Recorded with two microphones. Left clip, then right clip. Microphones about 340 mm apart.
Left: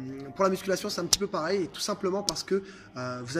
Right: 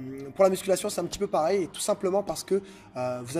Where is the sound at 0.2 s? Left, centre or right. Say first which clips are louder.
Right 4 dB; centre.